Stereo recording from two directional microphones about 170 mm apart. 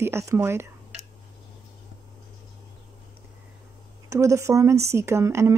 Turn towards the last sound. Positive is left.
turn(degrees=-15)  # may be behind; listen again after turning